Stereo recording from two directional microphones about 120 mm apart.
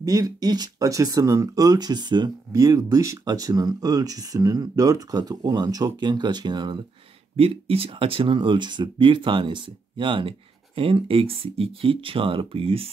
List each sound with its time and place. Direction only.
0.0 s speech: 30° right (ahead or behind)
7.3 s speech: 55° right (ahead or behind)